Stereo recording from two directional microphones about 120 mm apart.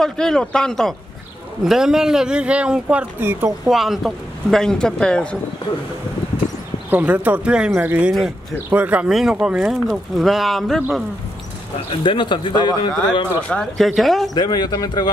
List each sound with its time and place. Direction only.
0.0 s speech: 5° left (ahead or behind); by 3.5 s 15° right (ahead or behind)
3.6 s speech: centre (ahead or behind)
6.9 s speech: 10° right (ahead or behind)
11.9 s speech: 45° left (ahead or behind)
13.5 s speech: 5° left (ahead or behind)
14.3 s speech: 35° left (ahead or behind)